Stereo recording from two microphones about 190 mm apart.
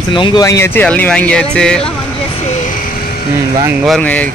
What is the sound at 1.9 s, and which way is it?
Vehicle, 30° left (ahead or behind).